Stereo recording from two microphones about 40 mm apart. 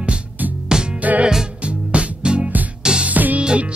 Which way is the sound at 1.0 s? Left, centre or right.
Right.